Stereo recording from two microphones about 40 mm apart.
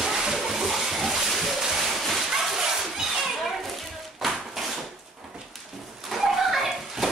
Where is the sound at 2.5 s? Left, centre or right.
Centre.